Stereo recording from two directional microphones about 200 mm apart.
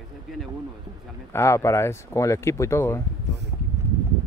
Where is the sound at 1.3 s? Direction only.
15° left (ahead or behind).